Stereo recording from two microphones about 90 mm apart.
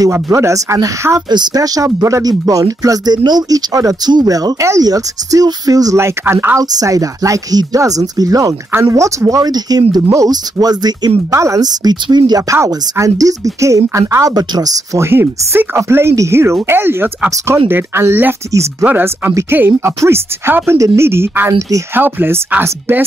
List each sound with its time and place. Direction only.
0.0 s speech: 35° right (ahead or behind)
1.3 s speech: 50° right (ahead or behind); by 6.6 s 25° right (ahead or behind)
6.6 s speech: 40° right (ahead or behind)
11.3 s speech: 35° right (ahead or behind)
11.6 s speech: 50° right (ahead or behind)
14.3 s speech: 50° right (ahead or behind)
15.0 s speech: 25° right (ahead or behind)
18.9 s speech: 20° right (ahead or behind)